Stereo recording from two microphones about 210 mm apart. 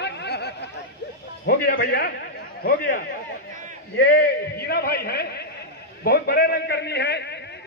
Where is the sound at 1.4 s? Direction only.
45° left (ahead or behind).